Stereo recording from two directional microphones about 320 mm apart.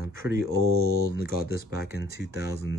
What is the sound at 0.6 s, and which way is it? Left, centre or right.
Mantra, right.